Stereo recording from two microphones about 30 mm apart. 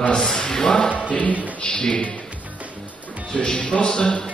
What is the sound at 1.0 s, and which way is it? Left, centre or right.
Choir, left.